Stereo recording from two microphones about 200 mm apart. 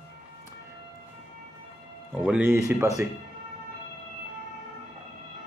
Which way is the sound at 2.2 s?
10° right (ahead or behind).